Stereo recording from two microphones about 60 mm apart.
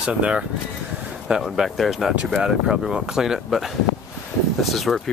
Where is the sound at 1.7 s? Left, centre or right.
Centre.